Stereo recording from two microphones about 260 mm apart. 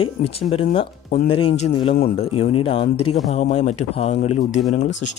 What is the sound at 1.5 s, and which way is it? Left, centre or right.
Speech, left.